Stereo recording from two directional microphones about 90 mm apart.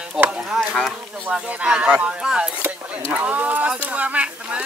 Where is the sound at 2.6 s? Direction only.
25° right (ahead or behind).